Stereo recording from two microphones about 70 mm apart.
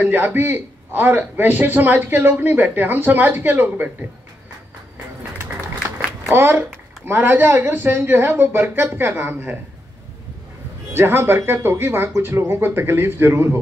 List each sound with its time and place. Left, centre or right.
0.0 s a man's voice: right
6.2 s a child's voice: right
10.9 s speech: right